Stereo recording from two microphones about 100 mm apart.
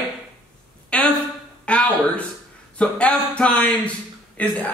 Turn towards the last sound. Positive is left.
turn(degrees=15)  # may be behind; listen again after turning